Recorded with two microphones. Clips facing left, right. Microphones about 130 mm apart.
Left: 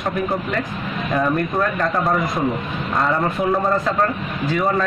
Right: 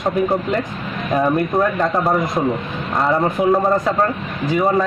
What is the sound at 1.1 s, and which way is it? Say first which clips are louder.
A man's voice: right 3 dB; 25° right (ahead or behind).